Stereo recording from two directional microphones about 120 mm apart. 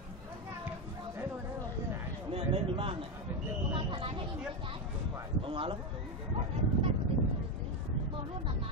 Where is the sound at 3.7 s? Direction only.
45° right (ahead or behind).